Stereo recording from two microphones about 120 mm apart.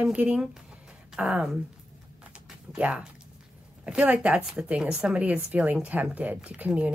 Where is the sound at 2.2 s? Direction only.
10° right (ahead or behind).